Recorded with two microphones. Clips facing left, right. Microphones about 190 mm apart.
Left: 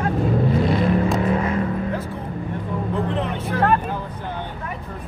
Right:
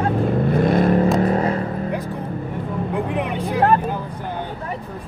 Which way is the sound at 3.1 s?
15° right (ahead or behind).